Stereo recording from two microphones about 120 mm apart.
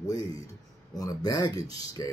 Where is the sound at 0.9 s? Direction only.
30° left (ahead or behind).